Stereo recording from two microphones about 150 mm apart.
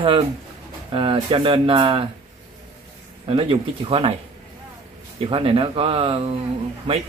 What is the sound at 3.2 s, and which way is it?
Speech, 40° right (ahead or behind).